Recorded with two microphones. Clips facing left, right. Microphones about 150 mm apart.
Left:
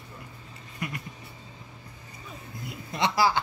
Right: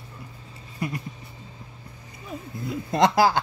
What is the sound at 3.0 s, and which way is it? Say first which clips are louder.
Speech: right 5 dB; 45° right (ahead or behind).